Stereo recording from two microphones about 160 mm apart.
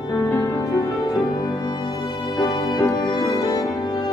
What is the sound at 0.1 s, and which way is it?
Music, 20° left (ahead or behind).